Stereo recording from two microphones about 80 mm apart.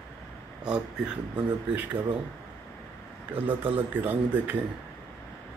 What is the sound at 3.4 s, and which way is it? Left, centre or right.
Speech, right.